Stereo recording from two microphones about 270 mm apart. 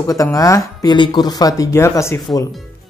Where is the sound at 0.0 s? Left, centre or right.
Centre.